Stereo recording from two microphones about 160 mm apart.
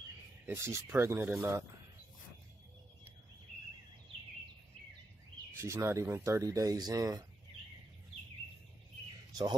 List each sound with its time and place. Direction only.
0.5 s speech: 15° right (ahead or behind)
5.6 s speech: 15° right (ahead or behind)
9.3 s speech: 25° right (ahead or behind)